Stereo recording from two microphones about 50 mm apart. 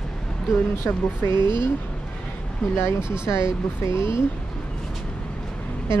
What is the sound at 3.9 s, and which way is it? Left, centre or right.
Speech, left.